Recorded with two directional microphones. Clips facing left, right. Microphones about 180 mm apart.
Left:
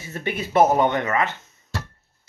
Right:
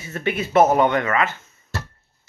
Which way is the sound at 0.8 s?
20° left (ahead or behind).